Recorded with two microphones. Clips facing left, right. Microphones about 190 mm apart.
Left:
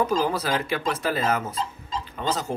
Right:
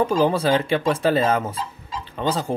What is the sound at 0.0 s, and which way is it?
Speech, 30° right (ahead or behind).